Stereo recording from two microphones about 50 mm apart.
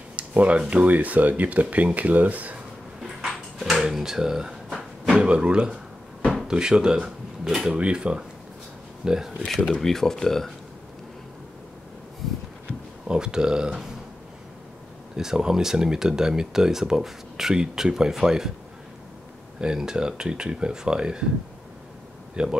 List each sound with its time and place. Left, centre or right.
0.1 s speech: right
3.0 s a sound: centre
3.9 s speech: centre
4.6 s a sound: centre
5.2 s speech: centre
7.4 s speech: centre
7.7 s speech: right
9.8 s speech: centre
13.0 s speech: centre
15.1 s speech: centre
19.6 s speech: centre
22.3 s speech: centre